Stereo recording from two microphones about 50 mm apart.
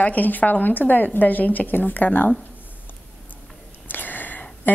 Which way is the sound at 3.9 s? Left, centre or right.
Left.